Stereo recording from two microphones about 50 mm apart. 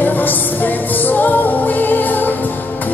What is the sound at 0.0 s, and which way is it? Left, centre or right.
Music, left.